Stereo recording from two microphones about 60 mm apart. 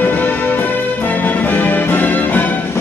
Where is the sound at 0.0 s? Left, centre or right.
Left.